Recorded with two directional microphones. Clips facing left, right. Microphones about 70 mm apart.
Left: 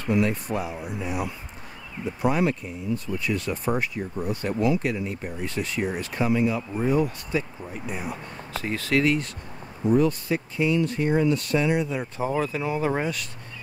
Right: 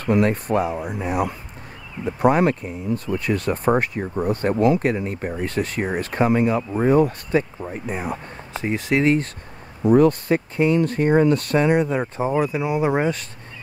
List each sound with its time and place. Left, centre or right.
0.0 s speech: right
8.5 s speech: right
9.8 s speech: right
12.2 s speech: centre